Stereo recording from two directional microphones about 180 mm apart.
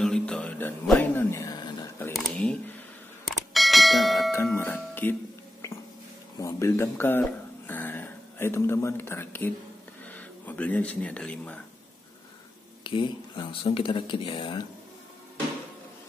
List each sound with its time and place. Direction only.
0.0 s music: 5° left (ahead or behind)
1.3 s a sound: 20° left (ahead or behind)
2.1 s a sound: 5° left (ahead or behind)
3.3 s bell: centre (ahead or behind)
4.6 s music: 10° left (ahead or behind)
6.4 s speech: 15° left (ahead or behind)
12.8 s speech: 25° left (ahead or behind)